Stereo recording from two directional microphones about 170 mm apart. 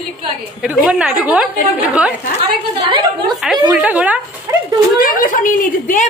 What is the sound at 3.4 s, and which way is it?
Speech, 5° right (ahead or behind).